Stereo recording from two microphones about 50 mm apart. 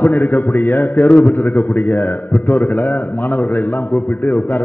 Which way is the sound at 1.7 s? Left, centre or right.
Left.